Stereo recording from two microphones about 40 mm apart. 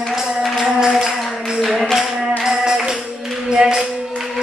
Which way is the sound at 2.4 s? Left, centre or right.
Centre.